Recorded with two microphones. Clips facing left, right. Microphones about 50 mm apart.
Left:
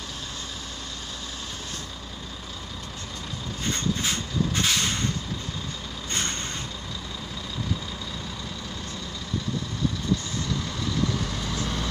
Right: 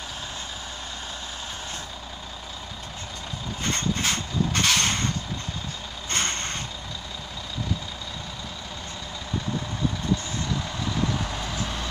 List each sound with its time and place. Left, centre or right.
3.7 s vehicle: right
6.0 s vehicle: right
10.6 s vehicle: centre